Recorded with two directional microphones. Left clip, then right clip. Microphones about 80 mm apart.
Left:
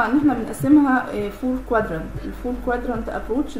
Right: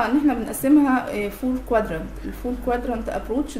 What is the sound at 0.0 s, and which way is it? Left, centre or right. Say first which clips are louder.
A woman's voice: left 2 dB; right.